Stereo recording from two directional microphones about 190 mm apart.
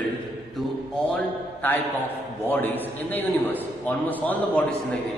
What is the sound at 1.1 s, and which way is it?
A man's voice, 10° left (ahead or behind).